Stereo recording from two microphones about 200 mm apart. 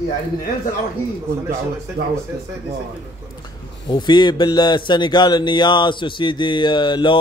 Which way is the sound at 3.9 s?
20° left (ahead or behind).